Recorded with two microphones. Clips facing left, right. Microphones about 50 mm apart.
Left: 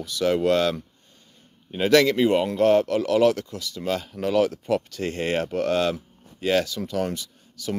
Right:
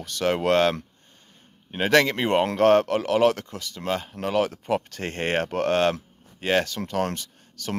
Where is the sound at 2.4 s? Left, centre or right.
Right.